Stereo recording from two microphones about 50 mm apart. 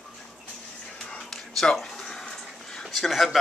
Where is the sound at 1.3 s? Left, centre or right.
Centre.